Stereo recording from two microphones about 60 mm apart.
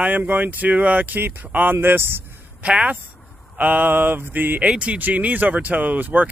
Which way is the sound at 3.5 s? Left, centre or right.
Right.